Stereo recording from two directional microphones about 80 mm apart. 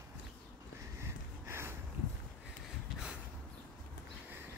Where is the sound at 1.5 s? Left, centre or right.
Right.